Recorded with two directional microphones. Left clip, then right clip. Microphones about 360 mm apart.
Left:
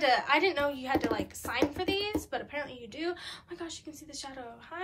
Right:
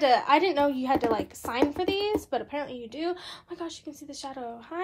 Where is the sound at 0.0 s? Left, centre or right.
Centre.